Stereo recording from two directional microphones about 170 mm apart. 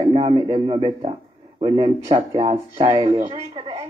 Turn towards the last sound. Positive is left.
turn(degrees=-25)  # may be behind; listen again after turning